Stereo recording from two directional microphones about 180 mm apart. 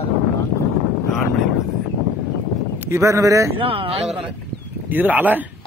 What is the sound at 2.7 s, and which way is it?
Speech, 15° right (ahead or behind).